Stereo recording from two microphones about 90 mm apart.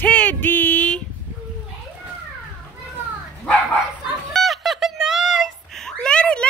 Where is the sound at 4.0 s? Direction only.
Centre (ahead or behind).